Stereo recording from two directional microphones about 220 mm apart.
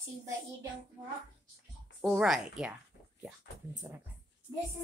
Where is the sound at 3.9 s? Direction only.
10° right (ahead or behind).